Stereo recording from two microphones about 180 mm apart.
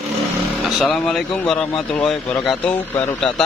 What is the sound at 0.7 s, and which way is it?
Speech, centre (ahead or behind).